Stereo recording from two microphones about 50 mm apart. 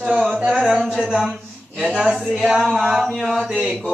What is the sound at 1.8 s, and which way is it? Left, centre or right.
Speech, centre.